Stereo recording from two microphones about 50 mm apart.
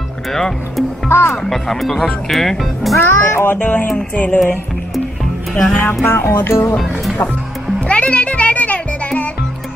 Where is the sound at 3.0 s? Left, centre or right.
Left.